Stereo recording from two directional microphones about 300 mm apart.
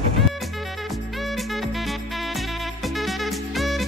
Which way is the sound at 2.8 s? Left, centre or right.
Centre.